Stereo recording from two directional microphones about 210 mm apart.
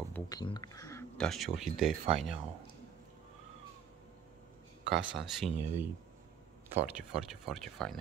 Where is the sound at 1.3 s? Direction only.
Centre (ahead or behind).